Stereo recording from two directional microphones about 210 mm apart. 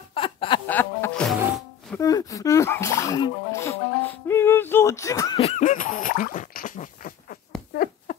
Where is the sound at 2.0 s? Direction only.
15° left (ahead or behind).